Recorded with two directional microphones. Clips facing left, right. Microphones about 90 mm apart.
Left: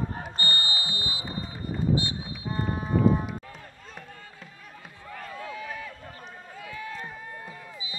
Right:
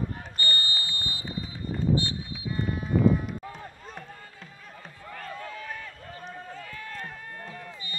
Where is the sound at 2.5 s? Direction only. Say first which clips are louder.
Left 1 dB; 35° left (ahead or behind).